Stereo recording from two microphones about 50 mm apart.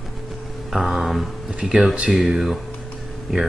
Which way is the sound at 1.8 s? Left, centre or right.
Centre.